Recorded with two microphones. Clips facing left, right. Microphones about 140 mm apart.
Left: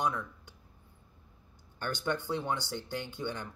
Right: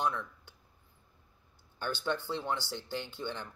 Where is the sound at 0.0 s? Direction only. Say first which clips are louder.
Left 1 dB; 10° left (ahead or behind).